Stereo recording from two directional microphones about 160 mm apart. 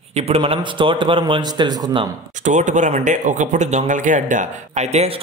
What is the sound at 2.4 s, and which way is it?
Speech, 50° right (ahead or behind).